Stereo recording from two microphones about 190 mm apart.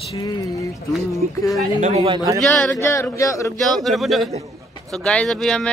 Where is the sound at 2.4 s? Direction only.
5° left (ahead or behind).